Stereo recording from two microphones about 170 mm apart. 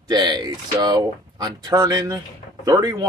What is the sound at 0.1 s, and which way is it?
Speech, 25° right (ahead or behind).